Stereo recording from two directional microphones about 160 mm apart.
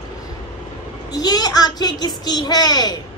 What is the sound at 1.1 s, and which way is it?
A child's voice, 25° left (ahead or behind).